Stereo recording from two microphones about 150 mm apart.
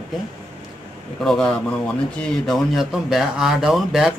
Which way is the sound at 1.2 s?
5° left (ahead or behind).